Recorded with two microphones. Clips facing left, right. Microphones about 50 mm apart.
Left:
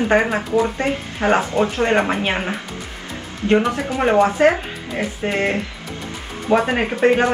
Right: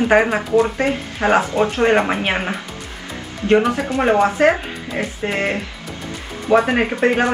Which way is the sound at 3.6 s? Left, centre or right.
Centre.